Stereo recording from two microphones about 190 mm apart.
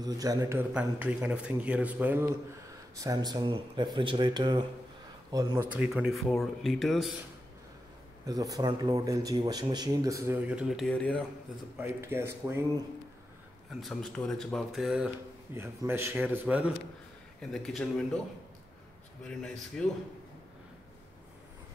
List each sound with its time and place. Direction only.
0.0 s a man's voice: 20° right (ahead or behind)
5.7 s speech: 5° right (ahead or behind)
8.3 s a man's voice: 20° right (ahead or behind); by 11.2 s 5° left (ahead or behind)
11.8 s a man's voice: 10° right (ahead or behind)
13.7 s a man's voice: centre (ahead or behind)
19.2 s speech: 5° left (ahead or behind)